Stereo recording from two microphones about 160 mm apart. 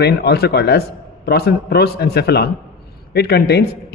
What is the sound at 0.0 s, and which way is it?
A man's voice, 90° left.